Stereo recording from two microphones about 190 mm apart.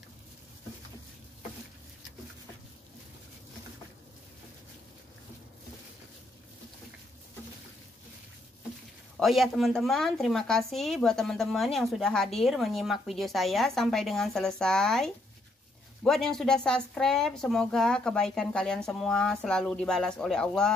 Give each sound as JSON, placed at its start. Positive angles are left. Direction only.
{"t": 9.1, "sound": "speech", "side_deg": 0}